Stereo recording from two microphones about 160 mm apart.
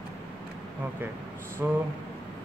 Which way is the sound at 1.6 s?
15° right (ahead or behind).